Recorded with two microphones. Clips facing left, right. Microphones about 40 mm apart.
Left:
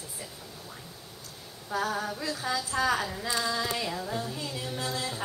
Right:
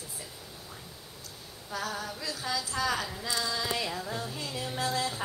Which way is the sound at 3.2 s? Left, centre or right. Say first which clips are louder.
Left 3 dB; left.